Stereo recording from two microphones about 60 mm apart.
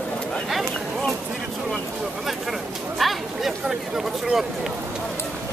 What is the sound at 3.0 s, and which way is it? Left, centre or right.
Speech, centre.